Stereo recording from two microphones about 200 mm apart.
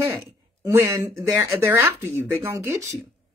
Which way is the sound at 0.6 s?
15° right (ahead or behind).